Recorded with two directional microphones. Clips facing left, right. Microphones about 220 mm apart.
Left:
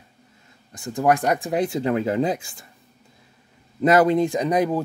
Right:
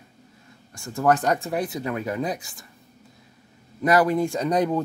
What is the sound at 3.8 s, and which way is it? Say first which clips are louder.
Speech: left 3 dB; 25° left (ahead or behind).